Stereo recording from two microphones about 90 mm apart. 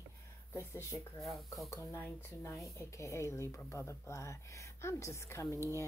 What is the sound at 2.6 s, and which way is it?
A woman's voice, 35° left (ahead or behind).